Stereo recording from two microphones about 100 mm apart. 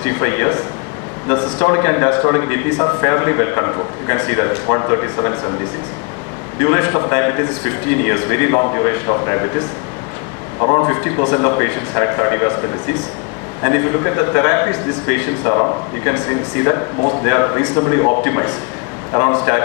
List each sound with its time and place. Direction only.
0.0 s a man's voice: 25° left (ahead or behind)
6.6 s a man's voice: 25° left (ahead or behind)
10.6 s a man's voice: 35° left (ahead or behind)
13.6 s a man's voice: 30° left (ahead or behind)